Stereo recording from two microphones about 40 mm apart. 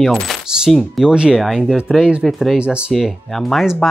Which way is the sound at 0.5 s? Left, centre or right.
Centre.